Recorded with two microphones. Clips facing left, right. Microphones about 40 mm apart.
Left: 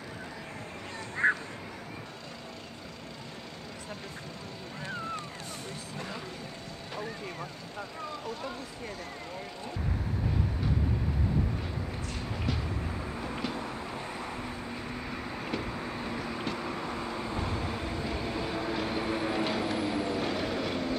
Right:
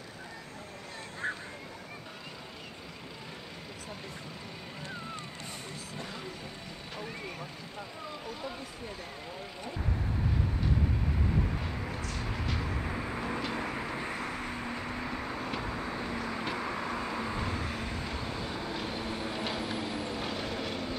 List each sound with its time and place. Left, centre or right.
12.8 s vehicle: right; by 21.0 s centre